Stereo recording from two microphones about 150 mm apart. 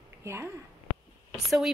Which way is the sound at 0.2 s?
20° right (ahead or behind).